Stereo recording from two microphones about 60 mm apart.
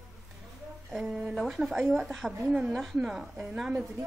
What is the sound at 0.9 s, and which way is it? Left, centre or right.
A woman's voice, centre.